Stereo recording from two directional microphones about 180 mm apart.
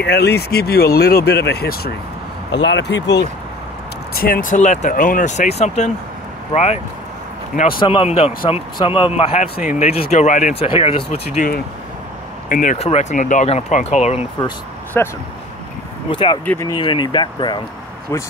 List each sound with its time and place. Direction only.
0.0 s speech: 65° left (ahead or behind)
2.5 s speech: 85° left
4.1 s speech: 55° left (ahead or behind); by 6.8 s 35° left (ahead or behind)
7.8 s speech: 30° left (ahead or behind)
12.4 s speech: 50° left (ahead or behind)
12.7 s speech: 35° left (ahead or behind)
15.0 s speech: 10° left (ahead or behind)
16.1 s speech: 25° left (ahead or behind)